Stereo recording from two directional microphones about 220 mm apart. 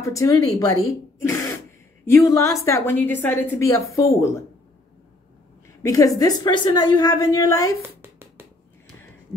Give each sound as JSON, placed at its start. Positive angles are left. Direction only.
{"t": 0.0, "sound": "a woman's voice", "side_deg": 15}
{"t": 5.8, "sound": "a woman's voice", "side_deg": 15}
{"t": 7.8, "sound": "a sound", "side_deg": -10}